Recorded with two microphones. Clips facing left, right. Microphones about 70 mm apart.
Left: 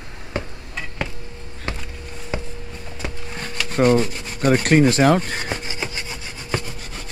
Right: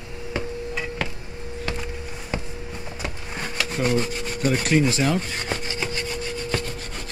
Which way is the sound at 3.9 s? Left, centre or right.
Centre.